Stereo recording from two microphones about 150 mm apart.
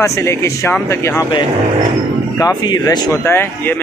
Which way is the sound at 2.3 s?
25° left (ahead or behind).